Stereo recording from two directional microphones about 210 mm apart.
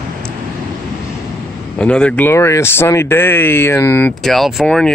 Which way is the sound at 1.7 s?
5° left (ahead or behind).